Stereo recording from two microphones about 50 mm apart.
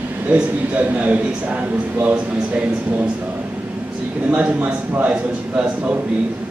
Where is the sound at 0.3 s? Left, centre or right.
Right.